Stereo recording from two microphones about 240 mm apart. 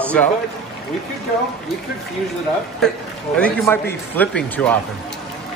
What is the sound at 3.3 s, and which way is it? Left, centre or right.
A man's voice, centre.